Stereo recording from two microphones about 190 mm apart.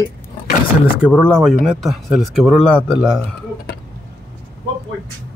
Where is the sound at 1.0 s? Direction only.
5° right (ahead or behind).